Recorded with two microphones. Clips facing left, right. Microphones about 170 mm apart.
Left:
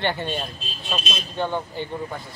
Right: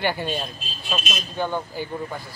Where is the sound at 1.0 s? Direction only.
30° left (ahead or behind).